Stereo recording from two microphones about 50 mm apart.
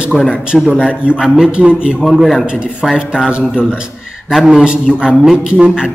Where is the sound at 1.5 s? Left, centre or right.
Right.